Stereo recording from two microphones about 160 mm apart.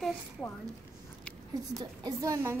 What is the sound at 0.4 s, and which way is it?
Speech, 15° left (ahead or behind).